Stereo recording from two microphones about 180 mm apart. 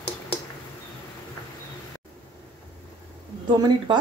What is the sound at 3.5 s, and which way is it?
Speech, 25° right (ahead or behind).